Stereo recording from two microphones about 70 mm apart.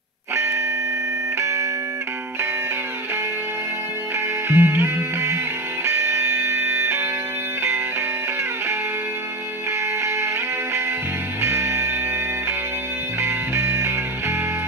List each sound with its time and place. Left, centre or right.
0.3 s music: right
4.5 s music: right
10.0 s music: right
13.2 s music: right